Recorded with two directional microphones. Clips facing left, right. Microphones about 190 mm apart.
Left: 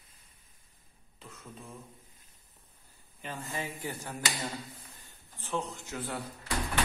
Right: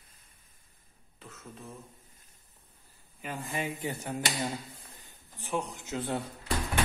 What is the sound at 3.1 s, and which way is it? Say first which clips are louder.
Speech: right 3 dB; 15° right (ahead or behind).